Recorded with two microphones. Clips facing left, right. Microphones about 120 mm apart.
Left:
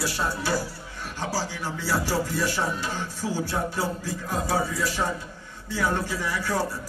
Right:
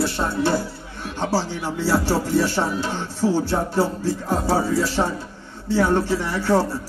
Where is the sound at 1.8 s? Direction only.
30° right (ahead or behind).